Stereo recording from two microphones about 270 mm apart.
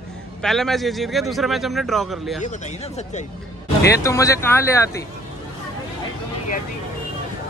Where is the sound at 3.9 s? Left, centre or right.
Centre.